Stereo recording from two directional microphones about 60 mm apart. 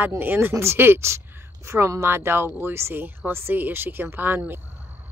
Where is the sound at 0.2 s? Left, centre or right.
Right.